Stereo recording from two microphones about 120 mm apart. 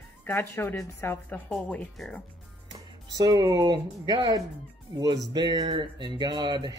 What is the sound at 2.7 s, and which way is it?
Speech, 35° right (ahead or behind).